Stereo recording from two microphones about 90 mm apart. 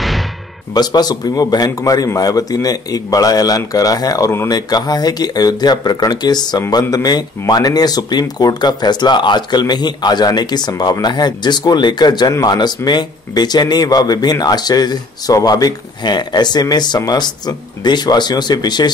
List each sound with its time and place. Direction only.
0.7 s speech: 50° left (ahead or behind)